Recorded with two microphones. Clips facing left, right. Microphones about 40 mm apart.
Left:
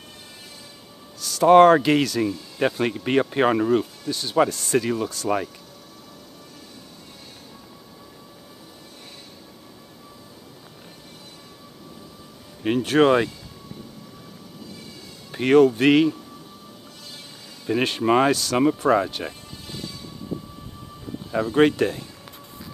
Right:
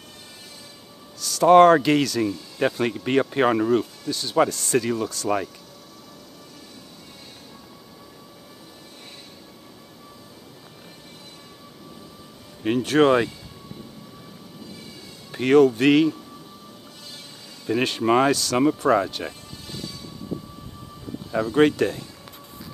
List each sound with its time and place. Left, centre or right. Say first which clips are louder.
1.1 s speech: even; centre
12.6 s speech: even; centre
15.3 s speech: even; centre
17.6 s speech: even; centre
21.3 s speech: even; centre